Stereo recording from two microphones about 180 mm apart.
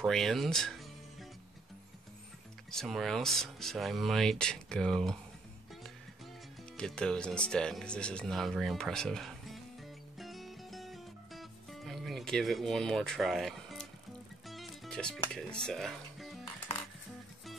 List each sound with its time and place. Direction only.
0.0 s speech: centre (ahead or behind)
2.7 s speech: centre (ahead or behind)
6.8 s speech: 5° left (ahead or behind)
10.1 s music: centre (ahead or behind)